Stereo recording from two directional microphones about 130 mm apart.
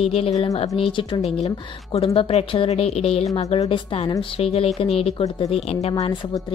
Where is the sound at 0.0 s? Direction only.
45° left (ahead or behind).